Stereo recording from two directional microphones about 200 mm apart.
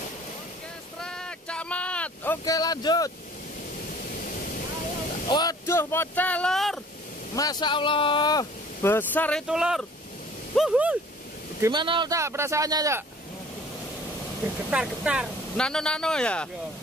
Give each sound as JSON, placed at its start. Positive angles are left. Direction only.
{"t": 1.0, "sound": "a sound", "side_deg": 5}
{"t": 4.2, "sound": "waterfall", "side_deg": 45}
{"t": 5.3, "sound": "speech", "side_deg": 20}
{"t": 7.3, "sound": "speech", "side_deg": 20}
{"t": 9.5, "sound": "speech", "side_deg": -5}
{"t": 11.6, "sound": "speech", "side_deg": -25}
{"t": 14.7, "sound": "speech", "side_deg": -5}